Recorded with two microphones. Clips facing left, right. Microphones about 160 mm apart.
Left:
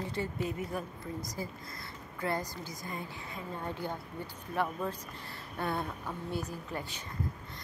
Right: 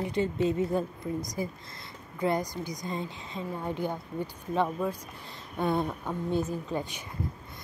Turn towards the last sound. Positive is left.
turn(degrees=-15)  # may be behind; listen again after turning